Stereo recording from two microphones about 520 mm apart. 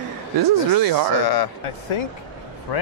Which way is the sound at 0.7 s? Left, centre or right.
Right.